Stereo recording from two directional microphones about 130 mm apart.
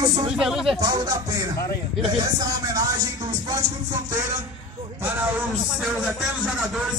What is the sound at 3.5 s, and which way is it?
Music, 30° right (ahead or behind).